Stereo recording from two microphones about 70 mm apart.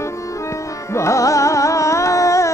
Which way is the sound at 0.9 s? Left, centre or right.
Left.